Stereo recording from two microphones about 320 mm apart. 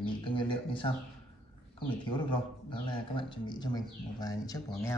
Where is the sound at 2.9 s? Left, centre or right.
Centre.